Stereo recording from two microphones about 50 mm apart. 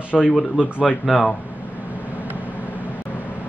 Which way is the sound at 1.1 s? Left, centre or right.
Centre.